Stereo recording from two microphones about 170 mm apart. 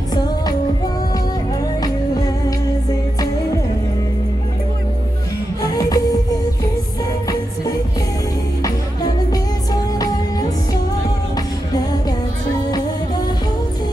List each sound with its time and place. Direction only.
1.8 s music: 20° left (ahead or behind)
5.6 s music: 20° left (ahead or behind)
8.6 s music: 20° left (ahead or behind)